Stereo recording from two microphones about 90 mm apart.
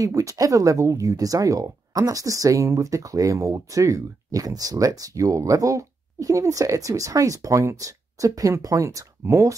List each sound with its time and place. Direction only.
0.0 s speech: 40° right (ahead or behind)